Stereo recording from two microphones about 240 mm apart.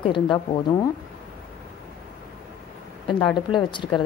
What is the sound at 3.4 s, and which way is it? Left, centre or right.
Speech, centre.